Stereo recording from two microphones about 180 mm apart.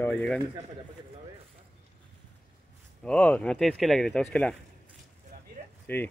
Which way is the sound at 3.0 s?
5° left (ahead or behind).